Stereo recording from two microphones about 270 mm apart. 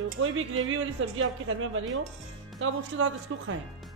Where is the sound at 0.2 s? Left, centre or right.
Right.